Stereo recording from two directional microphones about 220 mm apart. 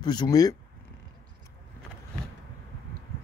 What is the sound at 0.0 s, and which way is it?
Speech, 20° left (ahead or behind).